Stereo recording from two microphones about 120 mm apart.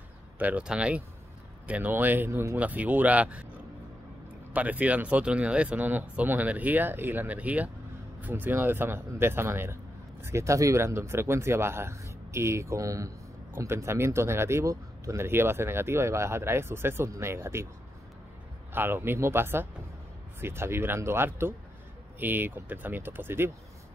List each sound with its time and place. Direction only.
0.4 s speech: 10° right (ahead or behind)
4.5 s speech: 10° right (ahead or behind)
18.7 s speech: 20° right (ahead or behind)